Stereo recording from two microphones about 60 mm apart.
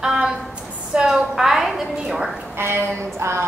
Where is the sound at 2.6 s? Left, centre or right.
Right.